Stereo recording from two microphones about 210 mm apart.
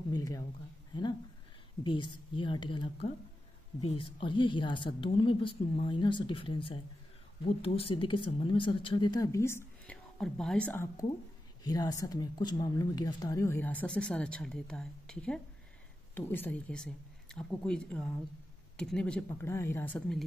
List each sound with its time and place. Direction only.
0.1 s speech: 15° left (ahead or behind)
1.8 s speech: 20° left (ahead or behind); by 20.2 s 5° left (ahead or behind)